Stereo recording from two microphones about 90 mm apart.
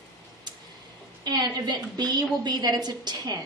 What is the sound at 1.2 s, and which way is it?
A woman's voice, 50° right (ahead or behind).